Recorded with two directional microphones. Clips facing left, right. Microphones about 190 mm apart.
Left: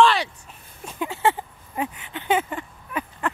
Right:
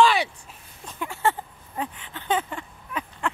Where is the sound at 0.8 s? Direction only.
20° left (ahead or behind).